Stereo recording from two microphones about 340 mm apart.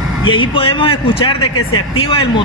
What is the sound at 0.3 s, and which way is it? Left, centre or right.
A man's voice, centre.